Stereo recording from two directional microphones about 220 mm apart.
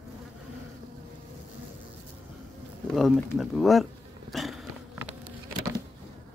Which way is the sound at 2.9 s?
Centre (ahead or behind).